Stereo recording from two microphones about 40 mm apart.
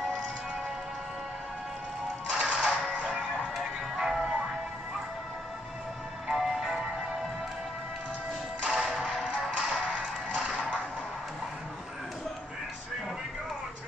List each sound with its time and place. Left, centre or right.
2.3 s music: right
3.5 s music: centre
6.2 s music: centre
8.7 s music: centre; by 10.8 s right